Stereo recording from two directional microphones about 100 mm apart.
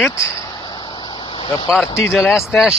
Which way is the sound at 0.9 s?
50° left (ahead or behind).